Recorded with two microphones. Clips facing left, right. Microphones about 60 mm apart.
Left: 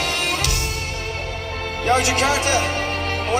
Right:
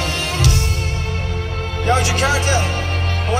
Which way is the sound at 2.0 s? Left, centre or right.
Left.